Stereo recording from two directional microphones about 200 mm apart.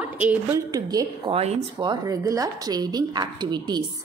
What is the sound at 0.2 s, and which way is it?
A woman's voice, 10° right (ahead or behind).